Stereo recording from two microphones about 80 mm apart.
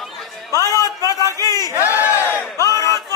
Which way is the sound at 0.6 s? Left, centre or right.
Left.